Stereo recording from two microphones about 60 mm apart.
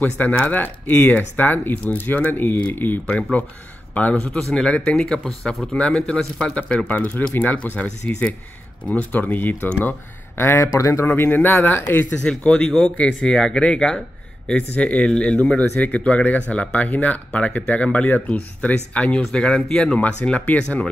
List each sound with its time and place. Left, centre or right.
0.0 s speech: left
3.2 s a man's voice: left
4.2 s speech: centre; by 12.2 s left
12.2 s speech: centre